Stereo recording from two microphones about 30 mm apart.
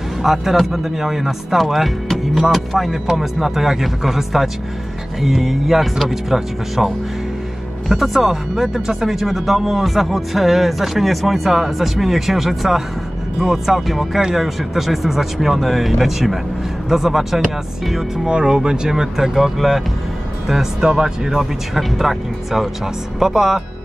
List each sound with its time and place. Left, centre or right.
0.2 s speech: centre
7.9 s speech: centre; by 19.0 s right
19.1 s speech: centre
20.8 s speech: centre